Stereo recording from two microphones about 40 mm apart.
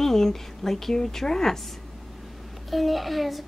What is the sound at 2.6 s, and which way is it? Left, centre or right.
Speech, centre.